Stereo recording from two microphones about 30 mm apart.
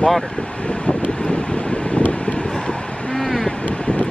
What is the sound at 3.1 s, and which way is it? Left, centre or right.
Vehicle, left.